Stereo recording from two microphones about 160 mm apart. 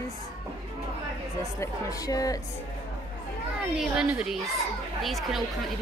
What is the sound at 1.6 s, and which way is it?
Speech, 20° left (ahead or behind).